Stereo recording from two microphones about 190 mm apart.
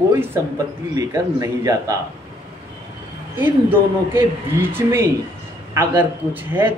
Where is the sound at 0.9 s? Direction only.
15° right (ahead or behind).